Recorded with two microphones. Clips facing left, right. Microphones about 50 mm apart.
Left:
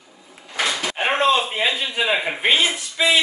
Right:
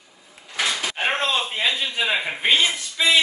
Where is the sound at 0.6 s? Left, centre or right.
Centre.